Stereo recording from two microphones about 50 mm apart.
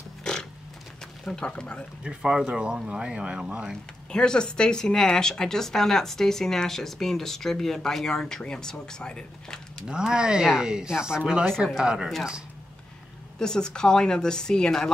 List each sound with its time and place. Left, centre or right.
0.2 s pig: centre
1.2 s speech: centre
2.0 s speech: centre
4.1 s speech: centre
9.8 s speech: centre
13.4 s speech: centre